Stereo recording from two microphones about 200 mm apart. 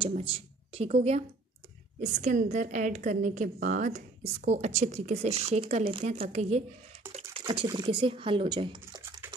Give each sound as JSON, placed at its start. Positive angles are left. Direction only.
{"t": 0.0, "sound": "a woman's voice", "side_deg": -30}